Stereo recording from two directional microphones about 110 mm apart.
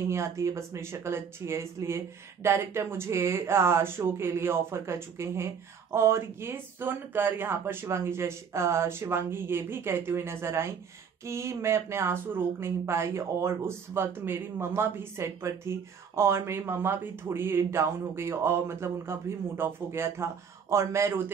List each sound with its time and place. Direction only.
0.1 s speech: 25° right (ahead or behind)